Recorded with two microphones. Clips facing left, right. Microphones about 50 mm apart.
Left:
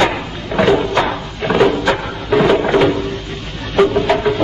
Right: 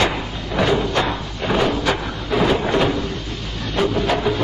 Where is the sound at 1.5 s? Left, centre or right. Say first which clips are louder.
Left 6 dB; left.